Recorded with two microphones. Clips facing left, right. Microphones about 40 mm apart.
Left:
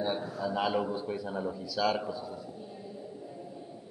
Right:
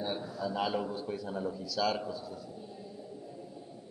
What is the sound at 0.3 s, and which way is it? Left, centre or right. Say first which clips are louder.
A man's voice: left 2 dB; centre.